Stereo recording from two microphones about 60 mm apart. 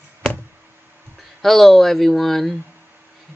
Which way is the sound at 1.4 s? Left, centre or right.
Centre.